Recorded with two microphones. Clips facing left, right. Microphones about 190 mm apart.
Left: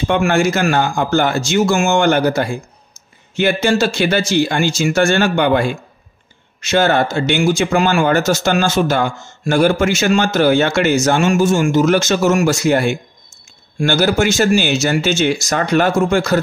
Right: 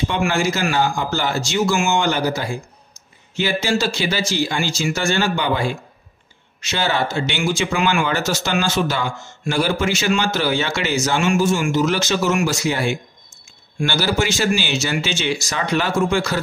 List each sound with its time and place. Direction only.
0.0 s speech: 50° left (ahead or behind)